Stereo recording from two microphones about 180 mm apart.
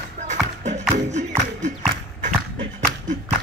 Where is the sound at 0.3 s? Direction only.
40° right (ahead or behind).